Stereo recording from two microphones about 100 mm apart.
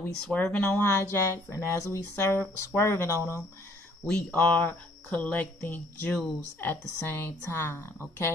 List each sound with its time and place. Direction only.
0.3 s speech: 15° left (ahead or behind)
4.0 s speech: 15° left (ahead or behind)